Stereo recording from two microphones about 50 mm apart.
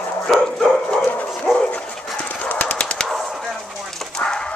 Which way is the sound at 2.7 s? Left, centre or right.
Centre.